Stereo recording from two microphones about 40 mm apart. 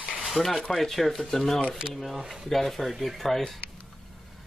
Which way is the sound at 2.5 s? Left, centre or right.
Centre.